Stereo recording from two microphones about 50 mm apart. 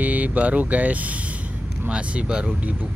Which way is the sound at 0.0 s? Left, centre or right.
Right.